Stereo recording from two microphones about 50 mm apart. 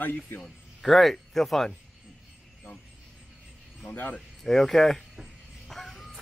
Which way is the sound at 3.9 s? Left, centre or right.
Left.